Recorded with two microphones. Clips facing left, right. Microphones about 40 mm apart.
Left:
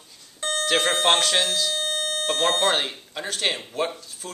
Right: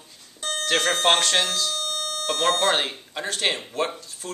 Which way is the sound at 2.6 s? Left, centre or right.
Centre.